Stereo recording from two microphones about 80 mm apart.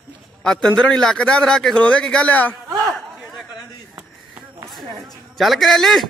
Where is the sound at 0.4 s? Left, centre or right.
Centre.